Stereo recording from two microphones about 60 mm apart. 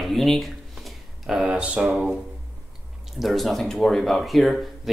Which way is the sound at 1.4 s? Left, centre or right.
Centre.